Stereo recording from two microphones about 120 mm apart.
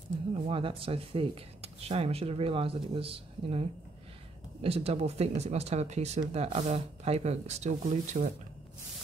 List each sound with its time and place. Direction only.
0.5 s speech: 50° right (ahead or behind); by 8.3 s 80° right